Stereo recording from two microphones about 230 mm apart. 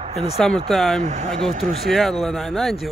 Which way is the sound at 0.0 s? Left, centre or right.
Right.